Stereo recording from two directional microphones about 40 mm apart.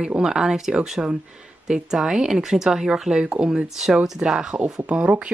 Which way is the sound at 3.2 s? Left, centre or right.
Right.